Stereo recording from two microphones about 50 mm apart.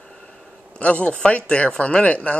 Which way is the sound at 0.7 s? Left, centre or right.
Left.